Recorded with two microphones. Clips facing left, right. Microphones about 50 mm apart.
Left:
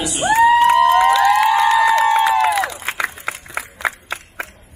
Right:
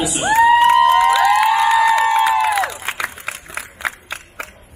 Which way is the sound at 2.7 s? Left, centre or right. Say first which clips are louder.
Left 1 dB; centre.